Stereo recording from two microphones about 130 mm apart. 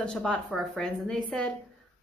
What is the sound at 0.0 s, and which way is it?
A woman's voice, 5° left (ahead or behind).